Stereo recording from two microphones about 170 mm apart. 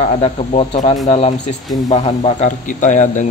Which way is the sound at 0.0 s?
40° left (ahead or behind).